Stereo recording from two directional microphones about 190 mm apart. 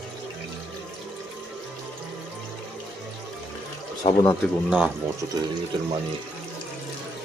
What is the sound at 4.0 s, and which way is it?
Speech, 20° left (ahead or behind).